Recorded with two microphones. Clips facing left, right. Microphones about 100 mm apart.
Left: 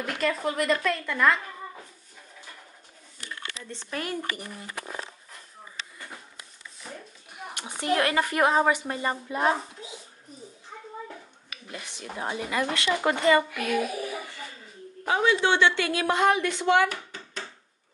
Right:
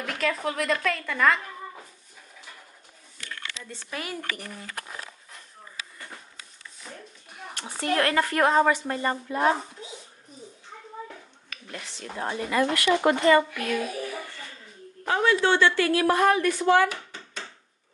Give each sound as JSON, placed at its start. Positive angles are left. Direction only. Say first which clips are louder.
{"t": 0.0, "sound": "speech", "louder": "left 1 dB", "side_deg": 0}
{"t": 3.6, "sound": "speech", "louder": "left 3 dB", "side_deg": -5}
{"t": 4.2, "sound": "speech", "louder": "left 1 dB", "side_deg": 10}
{"t": 7.5, "sound": "speech", "louder": "even", "side_deg": 15}
{"t": 11.1, "sound": "speech", "louder": "left 1 dB", "side_deg": 10}
{"t": 12.8, "sound": "speech", "louder": "right 4 dB", "side_deg": -30}
{"t": 13.3, "sound": "a child's voice", "louder": "right 2 dB", "side_deg": 10}
{"t": 16.9, "sound": "hands", "louder": "left 1 dB", "side_deg": 5}